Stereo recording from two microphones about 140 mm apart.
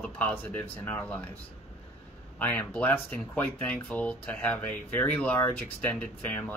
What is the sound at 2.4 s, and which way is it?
Speech, 10° left (ahead or behind).